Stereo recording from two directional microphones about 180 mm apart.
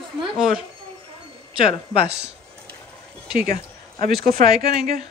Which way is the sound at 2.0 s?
65° right (ahead or behind).